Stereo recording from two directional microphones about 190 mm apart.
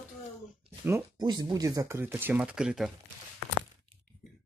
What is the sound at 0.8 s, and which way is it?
Speech, 20° right (ahead or behind).